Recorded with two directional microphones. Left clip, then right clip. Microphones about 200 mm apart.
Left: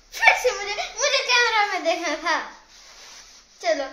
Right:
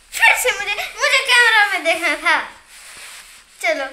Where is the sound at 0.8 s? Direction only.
Centre (ahead or behind).